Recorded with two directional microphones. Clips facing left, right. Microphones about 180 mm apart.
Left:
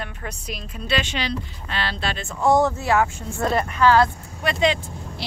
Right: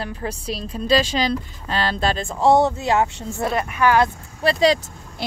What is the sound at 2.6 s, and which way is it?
Speech, 20° right (ahead or behind).